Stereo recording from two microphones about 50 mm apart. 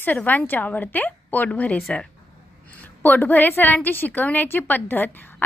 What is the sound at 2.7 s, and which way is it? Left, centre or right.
A woman's voice, left.